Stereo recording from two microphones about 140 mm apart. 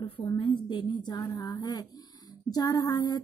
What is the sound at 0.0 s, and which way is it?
A woman's voice, 35° left (ahead or behind).